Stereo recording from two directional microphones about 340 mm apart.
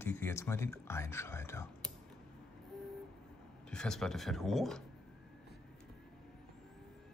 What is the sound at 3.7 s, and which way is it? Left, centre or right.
Speech, centre.